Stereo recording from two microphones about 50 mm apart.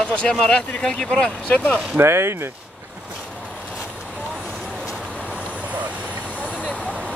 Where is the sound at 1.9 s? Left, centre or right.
Right.